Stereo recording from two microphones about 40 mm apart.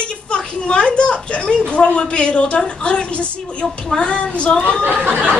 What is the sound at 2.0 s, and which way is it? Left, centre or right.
A woman's voice, left.